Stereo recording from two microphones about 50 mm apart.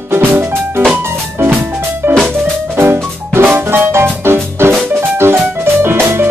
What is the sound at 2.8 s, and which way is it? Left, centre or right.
Music, right.